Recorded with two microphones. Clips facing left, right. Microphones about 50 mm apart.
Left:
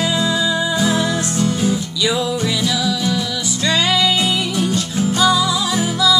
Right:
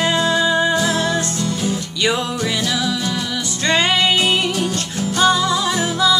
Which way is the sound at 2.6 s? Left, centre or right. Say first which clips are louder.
Left 2 dB; right.